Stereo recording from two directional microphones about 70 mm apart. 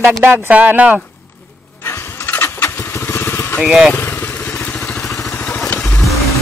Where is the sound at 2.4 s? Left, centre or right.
Left.